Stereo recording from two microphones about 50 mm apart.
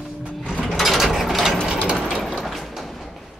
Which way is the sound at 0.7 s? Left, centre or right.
Centre.